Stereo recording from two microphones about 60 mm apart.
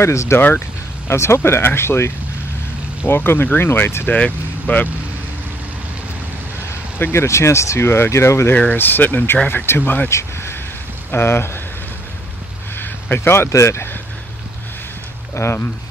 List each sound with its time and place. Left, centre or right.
0.0 s speech: left
4.1 s speech: left
7.0 s speech: left
8.5 s speech: left
10.0 s speech: left
12.7 s a sound: left
13.5 s speech: left
15.3 s speech: left